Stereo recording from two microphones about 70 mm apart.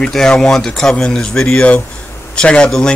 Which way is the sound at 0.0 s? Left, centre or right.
Centre.